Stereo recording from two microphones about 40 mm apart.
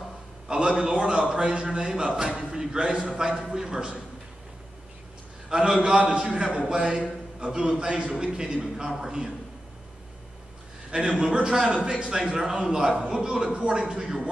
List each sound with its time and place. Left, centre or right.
0.5 s a man's voice: right
5.5 s a man's voice: centre
10.9 s a man's voice: centre